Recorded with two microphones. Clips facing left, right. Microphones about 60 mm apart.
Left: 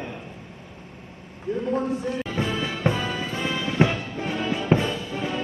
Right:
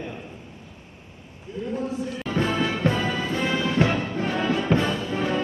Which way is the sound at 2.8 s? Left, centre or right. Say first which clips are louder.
Even; left.